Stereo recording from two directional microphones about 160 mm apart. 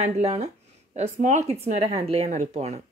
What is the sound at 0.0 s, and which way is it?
Speech, 40° right (ahead or behind).